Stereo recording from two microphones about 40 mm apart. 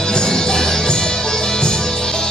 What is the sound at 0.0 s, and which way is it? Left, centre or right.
Music, centre.